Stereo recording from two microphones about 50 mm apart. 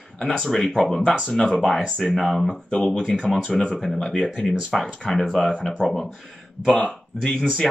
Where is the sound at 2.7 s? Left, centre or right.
Centre.